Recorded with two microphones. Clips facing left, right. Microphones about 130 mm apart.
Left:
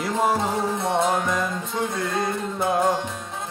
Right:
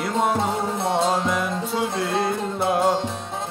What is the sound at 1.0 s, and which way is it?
Music, 25° right (ahead or behind).